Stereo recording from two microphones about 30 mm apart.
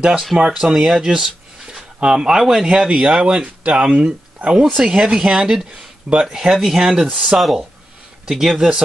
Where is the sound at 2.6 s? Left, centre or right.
Right.